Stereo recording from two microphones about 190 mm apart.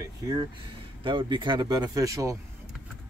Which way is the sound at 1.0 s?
25° right (ahead or behind).